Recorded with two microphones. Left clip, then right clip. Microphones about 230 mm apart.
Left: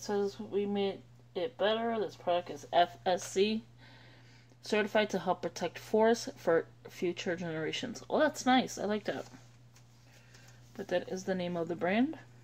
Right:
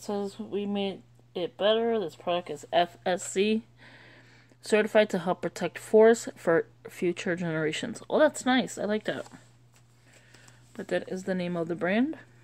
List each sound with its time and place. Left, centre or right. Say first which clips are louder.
0.0 s speech: even; right
3.3 s a sound: right 4 dB; right
4.6 s speech: right 7 dB; right
10.8 s speech: right 3 dB; right